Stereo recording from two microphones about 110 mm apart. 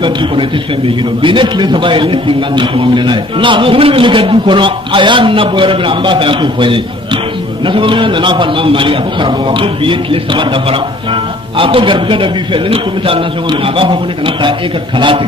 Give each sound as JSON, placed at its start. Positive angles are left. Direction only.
{"t": 1.2, "sound": "a man's voice", "side_deg": -50}